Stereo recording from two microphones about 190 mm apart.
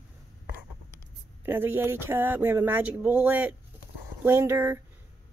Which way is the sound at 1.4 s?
10° right (ahead or behind).